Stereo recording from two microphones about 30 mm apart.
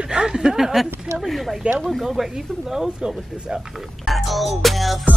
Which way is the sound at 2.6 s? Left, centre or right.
Centre.